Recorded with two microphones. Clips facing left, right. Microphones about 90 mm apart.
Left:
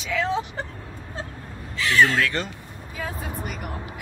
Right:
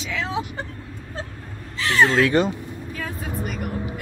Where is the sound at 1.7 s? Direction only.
35° right (ahead or behind).